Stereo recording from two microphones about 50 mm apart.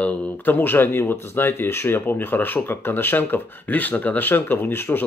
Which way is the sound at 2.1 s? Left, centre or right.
Left.